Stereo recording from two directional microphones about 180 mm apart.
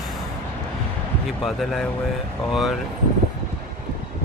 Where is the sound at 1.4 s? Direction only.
Centre (ahead or behind).